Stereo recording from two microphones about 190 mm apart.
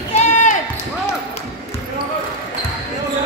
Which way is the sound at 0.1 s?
40° left (ahead or behind).